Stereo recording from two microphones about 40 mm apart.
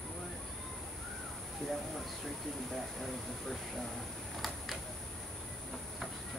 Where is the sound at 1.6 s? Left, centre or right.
Centre.